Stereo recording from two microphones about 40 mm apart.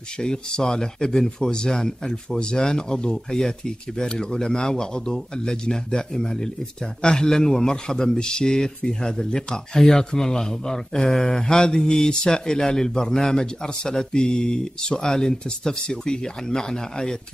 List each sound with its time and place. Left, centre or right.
0.2 s a man's voice: centre